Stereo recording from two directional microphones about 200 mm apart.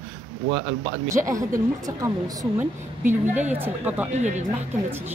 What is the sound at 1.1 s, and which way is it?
A woman's voice, 15° right (ahead or behind).